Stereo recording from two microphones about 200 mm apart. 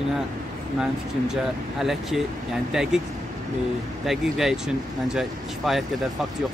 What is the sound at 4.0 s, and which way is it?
Speech, centre (ahead or behind).